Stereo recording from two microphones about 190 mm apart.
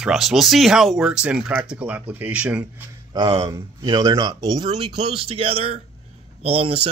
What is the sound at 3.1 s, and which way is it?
Speech, 30° right (ahead or behind).